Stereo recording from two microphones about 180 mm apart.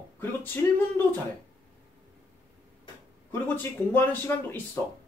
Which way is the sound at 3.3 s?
10° left (ahead or behind).